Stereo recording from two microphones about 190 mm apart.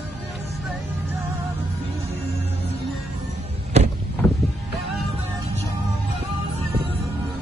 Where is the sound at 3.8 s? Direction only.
35° right (ahead or behind).